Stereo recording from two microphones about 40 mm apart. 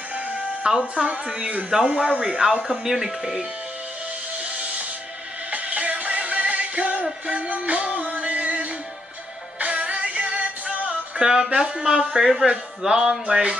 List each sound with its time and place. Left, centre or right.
0.9 s speech: right
5.5 s music: right
11.1 s speech: centre